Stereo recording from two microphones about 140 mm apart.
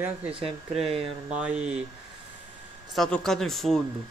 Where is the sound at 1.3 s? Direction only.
10° right (ahead or behind).